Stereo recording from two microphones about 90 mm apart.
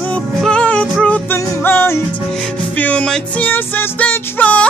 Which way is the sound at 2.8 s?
15° left (ahead or behind).